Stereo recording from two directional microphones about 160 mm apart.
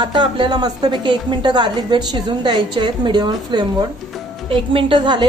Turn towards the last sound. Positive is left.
turn(degrees=-30)  # may be behind; listen again after turning